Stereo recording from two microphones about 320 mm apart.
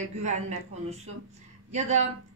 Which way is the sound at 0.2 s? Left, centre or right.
Right.